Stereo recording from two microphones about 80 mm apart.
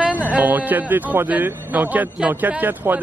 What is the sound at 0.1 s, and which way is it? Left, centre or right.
Speech, right.